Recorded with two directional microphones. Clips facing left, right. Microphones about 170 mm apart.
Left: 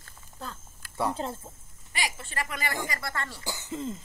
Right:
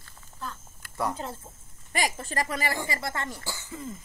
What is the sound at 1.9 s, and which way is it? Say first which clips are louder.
Speech: right 6 dB; 45° right (ahead or behind).